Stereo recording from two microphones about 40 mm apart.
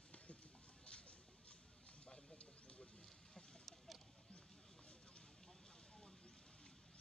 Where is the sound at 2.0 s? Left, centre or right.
Left.